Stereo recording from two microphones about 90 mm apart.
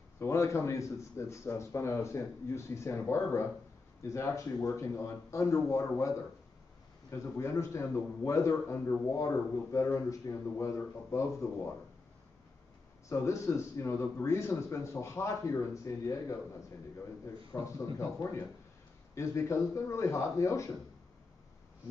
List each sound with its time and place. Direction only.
0.2 s speech: 30° left (ahead or behind)
13.1 s speech: 35° left (ahead or behind)
17.5 s speech: 35° left (ahead or behind)